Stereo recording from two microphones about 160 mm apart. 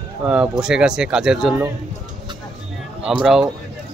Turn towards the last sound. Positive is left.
turn(degrees=-5)  # may be behind; listen again after turning